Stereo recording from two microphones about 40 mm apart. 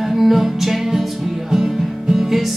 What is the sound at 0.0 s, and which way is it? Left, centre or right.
Music, centre.